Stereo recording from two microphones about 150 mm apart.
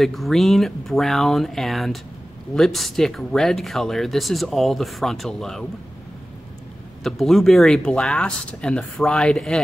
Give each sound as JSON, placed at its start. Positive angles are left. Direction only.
{"t": 0.0, "sound": "speech", "side_deg": 0}
{"t": 7.0, "sound": "speech", "side_deg": 0}